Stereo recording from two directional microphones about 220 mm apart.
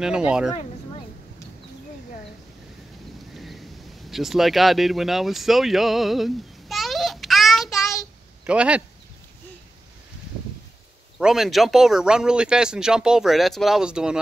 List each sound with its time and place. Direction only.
3.3 s a sound: centre (ahead or behind)
4.1 s speech: centre (ahead or behind)
11.1 s speech: centre (ahead or behind)